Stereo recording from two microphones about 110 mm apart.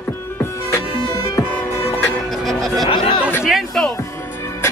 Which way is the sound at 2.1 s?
Centre (ahead or behind).